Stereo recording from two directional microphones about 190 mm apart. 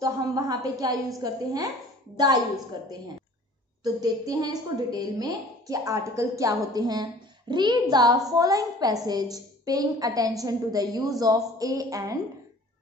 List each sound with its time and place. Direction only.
0.0 s a woman's voice: 20° right (ahead or behind)
3.8 s a woman's voice: 20° right (ahead or behind)